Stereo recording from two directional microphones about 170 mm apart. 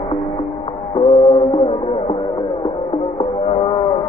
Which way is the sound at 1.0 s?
35° left (ahead or behind).